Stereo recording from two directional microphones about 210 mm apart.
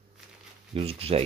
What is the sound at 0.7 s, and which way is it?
Speech, 25° right (ahead or behind).